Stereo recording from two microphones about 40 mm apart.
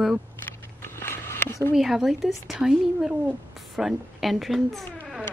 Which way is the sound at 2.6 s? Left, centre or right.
Right.